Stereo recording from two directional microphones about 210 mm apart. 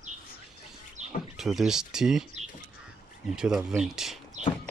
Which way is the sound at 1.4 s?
Centre (ahead or behind).